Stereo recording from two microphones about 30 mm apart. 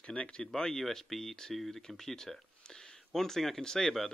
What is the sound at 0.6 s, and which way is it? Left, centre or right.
Speech, centre.